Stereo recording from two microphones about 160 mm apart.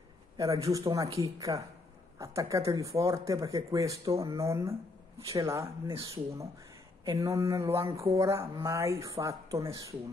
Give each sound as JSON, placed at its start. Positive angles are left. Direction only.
{"t": 0.4, "sound": "speech", "side_deg": -20}